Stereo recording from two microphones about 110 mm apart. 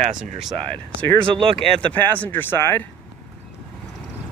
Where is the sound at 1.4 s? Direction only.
55° right (ahead or behind).